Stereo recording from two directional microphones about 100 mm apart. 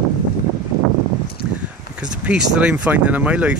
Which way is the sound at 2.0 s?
10° right (ahead or behind).